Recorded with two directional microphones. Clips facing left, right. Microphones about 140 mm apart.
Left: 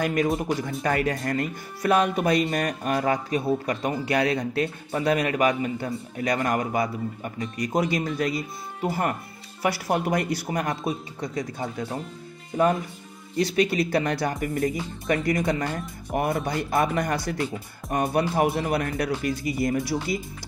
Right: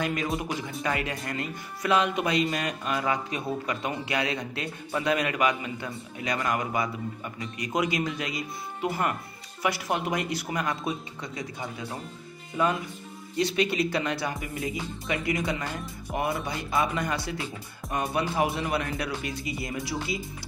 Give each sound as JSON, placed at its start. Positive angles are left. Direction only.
{"t": 0.0, "sound": "a man's voice", "side_deg": 45}
{"t": 13.4, "sound": "a man's voice", "side_deg": 40}